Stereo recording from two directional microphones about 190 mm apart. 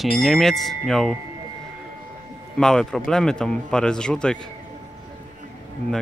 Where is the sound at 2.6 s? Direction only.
5° left (ahead or behind).